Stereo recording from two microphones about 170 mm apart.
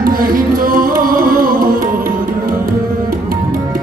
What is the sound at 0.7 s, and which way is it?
Music, 55° right (ahead or behind).